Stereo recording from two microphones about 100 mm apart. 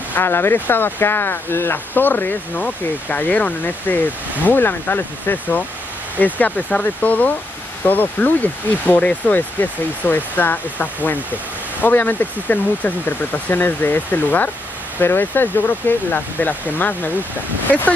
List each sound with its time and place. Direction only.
0.1 s speech: 20° left (ahead or behind)